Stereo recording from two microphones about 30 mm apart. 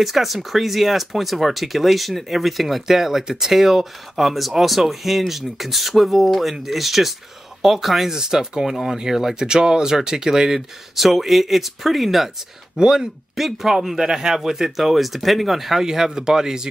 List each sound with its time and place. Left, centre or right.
0.0 s speech: centre
8.1 s speech: centre
11.0 s speech: centre
12.8 s speech: right
13.4 s speech: centre
15.8 s speech: centre